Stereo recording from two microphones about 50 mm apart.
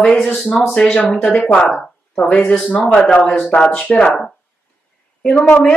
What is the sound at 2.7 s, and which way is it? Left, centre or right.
Speech, left.